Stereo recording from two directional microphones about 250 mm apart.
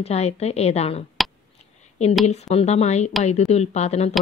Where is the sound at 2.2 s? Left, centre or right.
Left.